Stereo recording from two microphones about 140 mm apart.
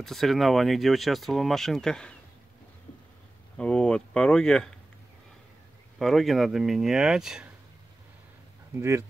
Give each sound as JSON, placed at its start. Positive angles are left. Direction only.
{"t": 0.0, "sound": "speech", "side_deg": 0}
{"t": 3.5, "sound": "speech", "side_deg": 5}
{"t": 5.9, "sound": "speech", "side_deg": 0}
{"t": 8.7, "sound": "speech", "side_deg": -20}